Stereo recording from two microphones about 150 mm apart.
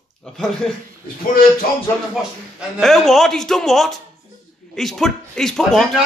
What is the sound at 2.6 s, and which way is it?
A man's voice, centre (ahead or behind).